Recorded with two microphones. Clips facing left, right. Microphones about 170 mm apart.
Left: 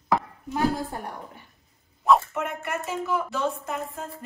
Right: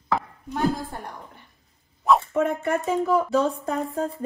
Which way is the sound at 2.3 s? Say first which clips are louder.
Right 7 dB; 35° right (ahead or behind).